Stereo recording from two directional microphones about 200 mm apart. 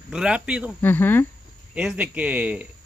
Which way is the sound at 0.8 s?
10° left (ahead or behind).